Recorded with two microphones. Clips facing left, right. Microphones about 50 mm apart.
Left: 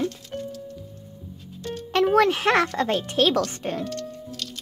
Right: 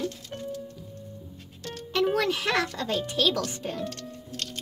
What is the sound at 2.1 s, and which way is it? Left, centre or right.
Speech, left.